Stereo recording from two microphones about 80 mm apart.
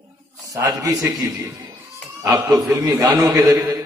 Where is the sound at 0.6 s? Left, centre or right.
Right.